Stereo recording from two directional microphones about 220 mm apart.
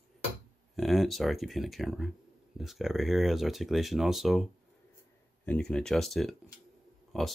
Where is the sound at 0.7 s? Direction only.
Centre (ahead or behind).